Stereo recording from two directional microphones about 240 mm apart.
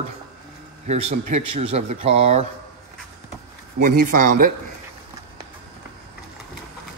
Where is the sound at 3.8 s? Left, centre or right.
Right.